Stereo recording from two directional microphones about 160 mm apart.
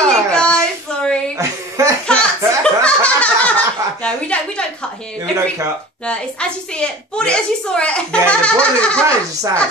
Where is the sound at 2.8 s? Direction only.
10° left (ahead or behind).